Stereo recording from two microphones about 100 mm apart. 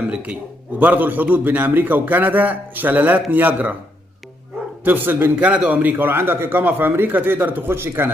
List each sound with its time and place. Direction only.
0.1 s a man's voice: 10° right (ahead or behind)
4.8 s a man's voice: 20° right (ahead or behind)
5.4 s a man's voice: 10° right (ahead or behind)